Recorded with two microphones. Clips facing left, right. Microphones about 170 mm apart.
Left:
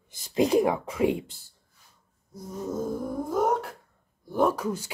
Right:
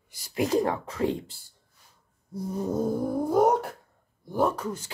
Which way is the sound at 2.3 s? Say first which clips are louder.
Right 4 dB; 30° right (ahead or behind).